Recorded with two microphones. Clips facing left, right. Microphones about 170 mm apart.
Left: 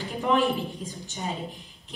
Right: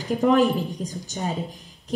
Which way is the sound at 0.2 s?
45° right (ahead or behind).